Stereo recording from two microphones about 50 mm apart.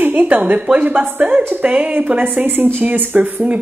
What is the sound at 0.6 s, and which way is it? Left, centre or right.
A woman's voice, right.